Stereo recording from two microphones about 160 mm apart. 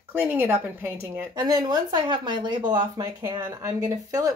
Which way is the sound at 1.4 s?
25° right (ahead or behind).